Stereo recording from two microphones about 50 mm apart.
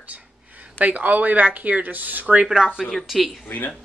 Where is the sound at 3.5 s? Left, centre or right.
Left.